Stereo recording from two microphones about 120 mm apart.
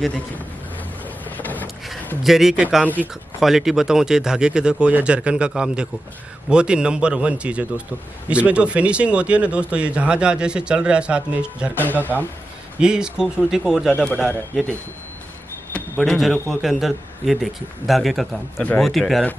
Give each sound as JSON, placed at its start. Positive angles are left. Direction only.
{"t": 1.2, "sound": "boat", "side_deg": 15}
{"t": 2.2, "sound": "speech", "side_deg": 0}
{"t": 11.8, "sound": "speech", "side_deg": 15}
{"t": 12.8, "sound": "speech", "side_deg": -5}
{"t": 14.0, "sound": "speech", "side_deg": 10}
{"t": 15.7, "sound": "a sound", "side_deg": 10}
{"t": 16.2, "sound": "speech", "side_deg": 0}